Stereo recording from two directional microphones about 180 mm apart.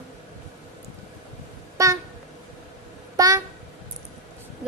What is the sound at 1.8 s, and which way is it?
Speech, 20° right (ahead or behind).